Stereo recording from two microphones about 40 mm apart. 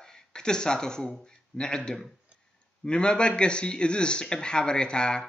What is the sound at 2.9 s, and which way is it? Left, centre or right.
Speech, left.